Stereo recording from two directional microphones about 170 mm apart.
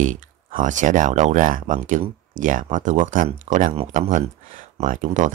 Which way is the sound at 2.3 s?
50° right (ahead or behind).